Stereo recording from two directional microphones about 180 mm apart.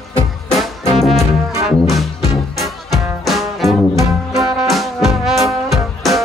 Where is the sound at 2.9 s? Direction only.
Centre (ahead or behind).